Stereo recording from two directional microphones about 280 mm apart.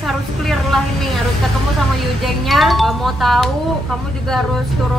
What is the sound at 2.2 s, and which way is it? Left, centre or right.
Speech, centre.